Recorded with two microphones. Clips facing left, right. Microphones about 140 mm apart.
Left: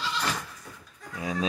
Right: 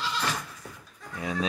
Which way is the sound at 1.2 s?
30° left (ahead or behind).